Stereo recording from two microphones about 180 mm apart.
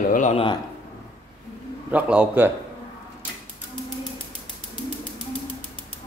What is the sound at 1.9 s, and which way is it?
Speech, 5° right (ahead or behind).